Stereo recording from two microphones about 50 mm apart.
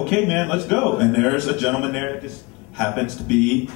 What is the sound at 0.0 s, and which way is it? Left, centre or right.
A man's voice, centre.